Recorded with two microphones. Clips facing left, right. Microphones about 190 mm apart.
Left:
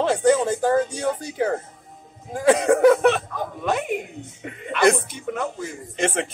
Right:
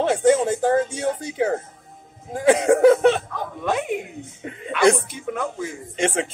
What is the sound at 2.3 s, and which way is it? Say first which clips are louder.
Speech: right 1 dB; 25° right (ahead or behind).